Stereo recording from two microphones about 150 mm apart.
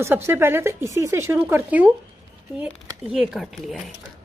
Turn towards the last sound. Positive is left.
turn(degrees=0)  # may be behind; listen again after turning